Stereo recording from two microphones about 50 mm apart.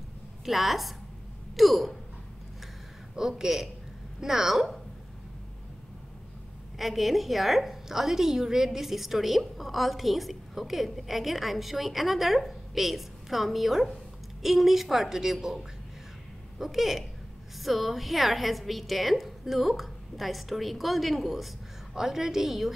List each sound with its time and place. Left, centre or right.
0.5 s a woman's voice: centre
3.2 s a woman's voice: centre
6.8 s a woman's voice: centre